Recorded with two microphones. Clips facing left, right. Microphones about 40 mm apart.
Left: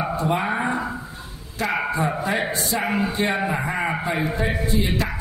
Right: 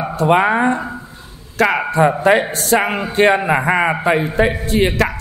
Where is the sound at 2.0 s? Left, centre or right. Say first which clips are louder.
Right 10 dB; right.